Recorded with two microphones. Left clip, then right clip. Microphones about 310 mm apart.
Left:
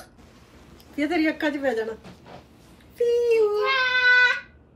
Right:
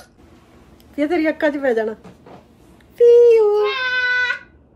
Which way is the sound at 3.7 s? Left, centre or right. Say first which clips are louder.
Even; centre.